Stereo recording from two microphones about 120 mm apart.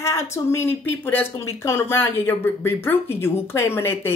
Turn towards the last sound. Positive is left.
turn(degrees=20)  # may be behind; listen again after turning